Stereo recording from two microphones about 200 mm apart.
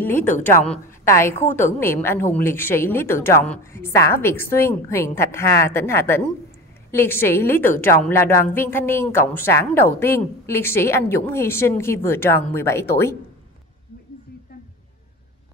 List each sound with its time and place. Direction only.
0.0 s a woman's voice: 10° left (ahead or behind)